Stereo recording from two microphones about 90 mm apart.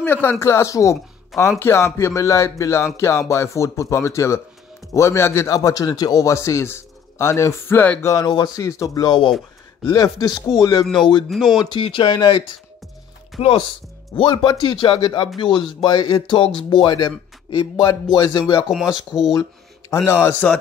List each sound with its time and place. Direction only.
0.0 s speech: 20° left (ahead or behind)
0.4 s a man's voice: 30° left (ahead or behind)
5.5 s a man's voice: 40° left (ahead or behind); by 7.9 s 25° left (ahead or behind)
8.0 s a man's voice: 35° left (ahead or behind)
11.2 s speech: centre (ahead or behind)
11.7 s speech: 70° left (ahead or behind)
12.1 s speech: 50° left (ahead or behind)
13.4 s speech: 90° left
14.1 s speech: 75° left (ahead or behind); by 18.7 s 45° left (ahead or behind)
18.7 s speech: 5° right (ahead or behind)
19.9 s a man's voice: 30° left (ahead or behind)